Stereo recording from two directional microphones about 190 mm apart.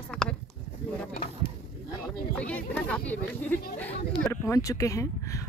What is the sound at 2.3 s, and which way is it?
Speech, 5° left (ahead or behind).